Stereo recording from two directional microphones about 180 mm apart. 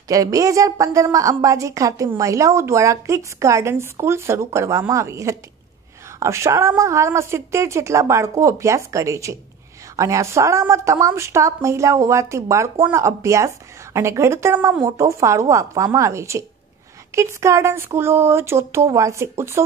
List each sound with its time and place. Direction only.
0.1 s a woman's voice: 20° right (ahead or behind)